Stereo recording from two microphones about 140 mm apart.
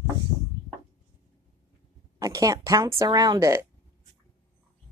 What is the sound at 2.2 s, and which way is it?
Speech, 25° right (ahead or behind).